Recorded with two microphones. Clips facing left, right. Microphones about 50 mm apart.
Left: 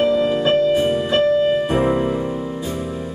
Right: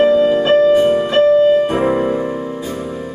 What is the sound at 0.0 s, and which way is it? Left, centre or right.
Music, centre.